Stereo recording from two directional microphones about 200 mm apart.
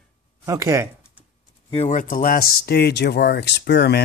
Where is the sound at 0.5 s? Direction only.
15° right (ahead or behind).